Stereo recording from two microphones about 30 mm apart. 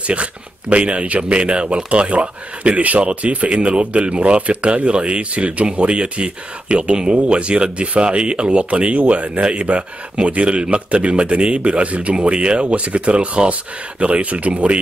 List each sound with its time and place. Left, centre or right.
0.0 s a man's voice: right
3.0 s a man's voice: right
9.4 s a man's voice: right